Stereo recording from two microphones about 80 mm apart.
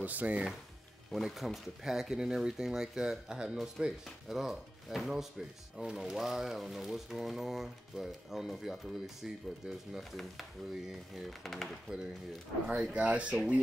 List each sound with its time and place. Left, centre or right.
0.0 s speech: centre
1.1 s speech: centre
12.6 s speech: centre